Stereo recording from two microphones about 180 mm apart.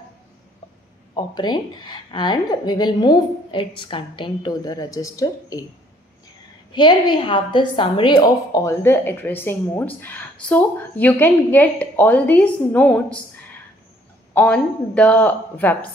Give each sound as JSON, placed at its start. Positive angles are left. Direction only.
{"t": 1.1, "sound": "a woman's voice", "side_deg": 25}
{"t": 6.7, "sound": "a woman's voice", "side_deg": 25}
{"t": 14.3, "sound": "a woman's voice", "side_deg": 5}